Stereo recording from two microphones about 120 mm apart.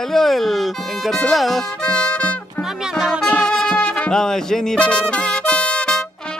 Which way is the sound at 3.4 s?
5° left (ahead or behind).